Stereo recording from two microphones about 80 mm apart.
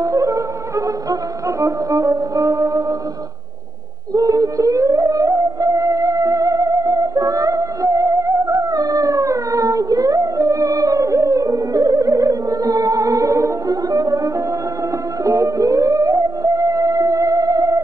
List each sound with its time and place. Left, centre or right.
0.0 s music: right
4.1 s music: right